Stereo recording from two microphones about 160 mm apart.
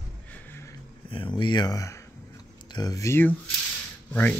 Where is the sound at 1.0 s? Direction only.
30° left (ahead or behind); by 4.4 s 10° left (ahead or behind).